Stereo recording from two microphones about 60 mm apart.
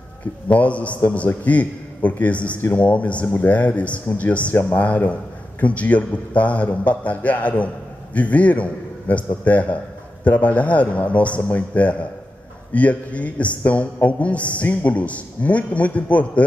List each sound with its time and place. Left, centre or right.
0.5 s a man's voice: left